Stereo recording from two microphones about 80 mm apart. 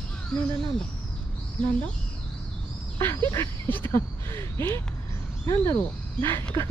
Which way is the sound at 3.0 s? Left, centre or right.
Left.